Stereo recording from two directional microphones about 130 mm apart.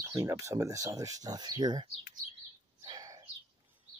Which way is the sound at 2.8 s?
25° right (ahead or behind).